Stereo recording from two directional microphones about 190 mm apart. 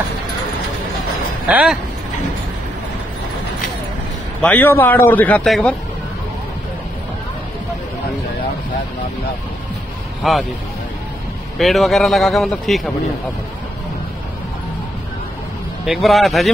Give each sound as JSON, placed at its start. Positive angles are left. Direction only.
{"t": 1.5, "sound": "speech", "side_deg": -5}
{"t": 4.4, "sound": "a man's voice", "side_deg": 10}
{"t": 10.2, "sound": "speech", "side_deg": 0}
{"t": 11.5, "sound": "speech", "side_deg": 0}
{"t": 15.8, "sound": "speech", "side_deg": 0}